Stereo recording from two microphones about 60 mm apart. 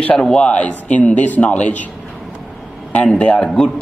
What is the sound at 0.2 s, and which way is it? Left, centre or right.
A man's voice, centre.